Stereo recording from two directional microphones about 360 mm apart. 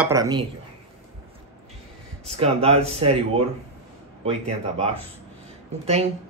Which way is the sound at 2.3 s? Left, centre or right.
Centre.